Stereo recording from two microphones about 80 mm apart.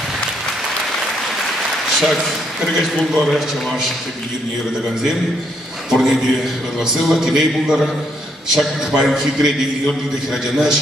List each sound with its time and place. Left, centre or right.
2.0 s a man's voice: centre
5.9 s a man's voice: centre